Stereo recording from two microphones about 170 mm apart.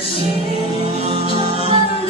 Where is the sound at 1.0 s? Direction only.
35° right (ahead or behind).